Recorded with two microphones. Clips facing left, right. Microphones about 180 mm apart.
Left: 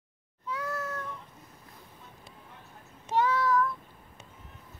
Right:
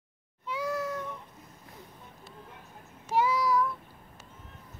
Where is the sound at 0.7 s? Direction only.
15° right (ahead or behind).